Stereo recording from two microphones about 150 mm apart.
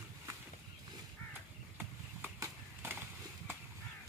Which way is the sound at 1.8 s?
15° right (ahead or behind).